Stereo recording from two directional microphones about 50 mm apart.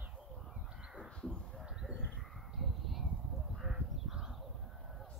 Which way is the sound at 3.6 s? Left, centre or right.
Centre.